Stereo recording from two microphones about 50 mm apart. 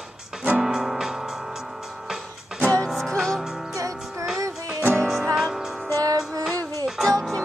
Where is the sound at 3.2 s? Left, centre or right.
Centre.